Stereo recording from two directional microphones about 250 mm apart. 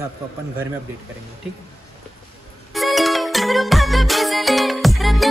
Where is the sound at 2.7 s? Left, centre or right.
Centre.